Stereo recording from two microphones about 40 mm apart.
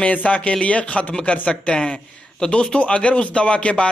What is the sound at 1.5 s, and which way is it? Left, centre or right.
Speech, left.